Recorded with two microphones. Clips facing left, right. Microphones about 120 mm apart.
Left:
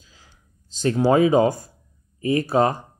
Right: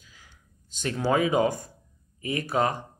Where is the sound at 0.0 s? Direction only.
30° left (ahead or behind).